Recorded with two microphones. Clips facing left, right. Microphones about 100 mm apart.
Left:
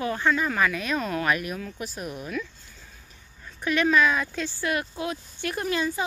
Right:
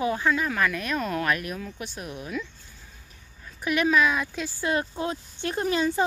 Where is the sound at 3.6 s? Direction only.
10° right (ahead or behind).